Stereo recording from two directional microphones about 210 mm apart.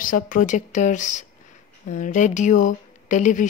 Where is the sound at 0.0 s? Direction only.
40° left (ahead or behind).